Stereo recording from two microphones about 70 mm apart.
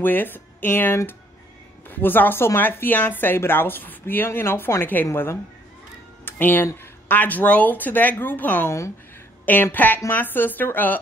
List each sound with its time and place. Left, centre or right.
0.0 s a woman's voice: left
8.6 s speech: left
9.5 s speech: left